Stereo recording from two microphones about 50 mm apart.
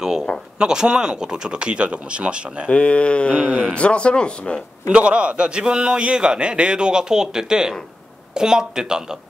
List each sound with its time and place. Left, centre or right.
0.6 s speech: centre
2.7 s speech: left
3.4 s speech: centre
3.7 s speech: left
4.8 s a man's voice: right